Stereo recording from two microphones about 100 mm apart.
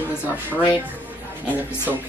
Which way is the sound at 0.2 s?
15° right (ahead or behind).